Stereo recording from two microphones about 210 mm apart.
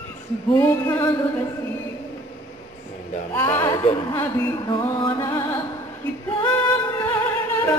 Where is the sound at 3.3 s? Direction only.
10° left (ahead or behind).